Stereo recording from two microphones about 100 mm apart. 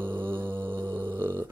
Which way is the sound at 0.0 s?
20° right (ahead or behind).